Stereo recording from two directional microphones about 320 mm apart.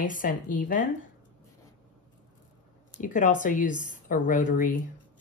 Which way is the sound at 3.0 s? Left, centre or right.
Left.